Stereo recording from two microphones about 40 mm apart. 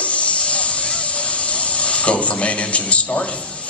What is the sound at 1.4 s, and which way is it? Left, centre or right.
Speech, left.